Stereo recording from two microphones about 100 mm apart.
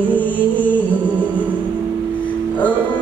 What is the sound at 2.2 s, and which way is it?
Music, 15° left (ahead or behind).